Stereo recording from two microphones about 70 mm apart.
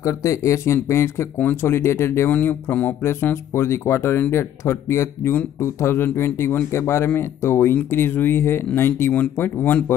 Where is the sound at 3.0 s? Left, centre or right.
Left.